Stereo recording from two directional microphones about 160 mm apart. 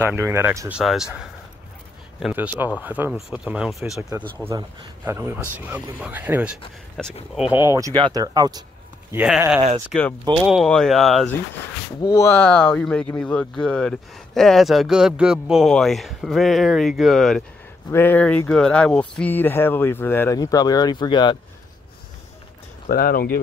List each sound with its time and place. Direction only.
0.0 s speech: 15° right (ahead or behind)
2.1 s speech: 5° right (ahead or behind)
4.6 s speech: 15° right (ahead or behind)
7.6 s speech: 20° right (ahead or behind)
9.1 s speech: 5° right (ahead or behind)
12.0 s speech: 20° left (ahead or behind)
22.8 s speech: 65° left (ahead or behind)